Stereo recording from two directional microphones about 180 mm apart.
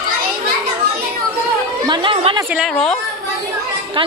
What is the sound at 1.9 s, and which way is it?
Speech, 30° right (ahead or behind).